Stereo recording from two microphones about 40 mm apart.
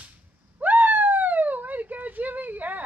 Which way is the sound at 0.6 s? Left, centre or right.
Right.